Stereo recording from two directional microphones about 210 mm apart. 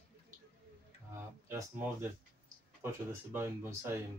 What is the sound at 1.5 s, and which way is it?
Speech, 10° right (ahead or behind).